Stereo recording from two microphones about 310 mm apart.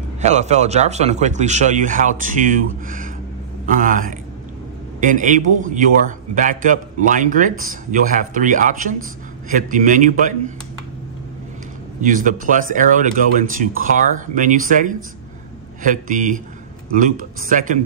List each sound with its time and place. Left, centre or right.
0.2 s speech: right
12.0 s speech: right